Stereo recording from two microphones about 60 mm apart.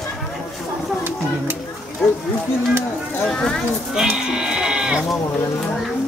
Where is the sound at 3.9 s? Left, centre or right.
Centre.